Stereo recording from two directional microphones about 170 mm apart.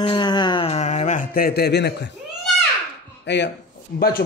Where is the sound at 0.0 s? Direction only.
25° left (ahead or behind); by 2.1 s 85° left.